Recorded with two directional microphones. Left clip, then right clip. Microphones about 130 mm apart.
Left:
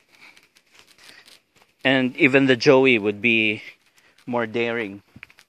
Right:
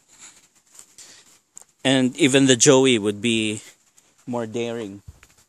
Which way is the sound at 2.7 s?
40° right (ahead or behind).